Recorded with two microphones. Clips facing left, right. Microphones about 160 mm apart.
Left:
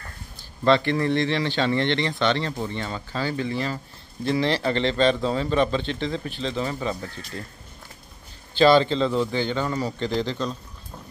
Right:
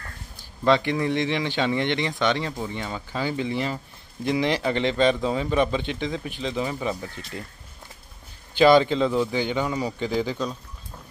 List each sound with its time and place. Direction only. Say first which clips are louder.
0.7 s speech: left 1 dB; 15° right (ahead or behind)
8.5 s speech: right 1 dB; 15° right (ahead or behind)